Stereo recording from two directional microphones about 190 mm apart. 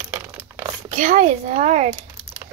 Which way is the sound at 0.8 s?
45° right (ahead or behind).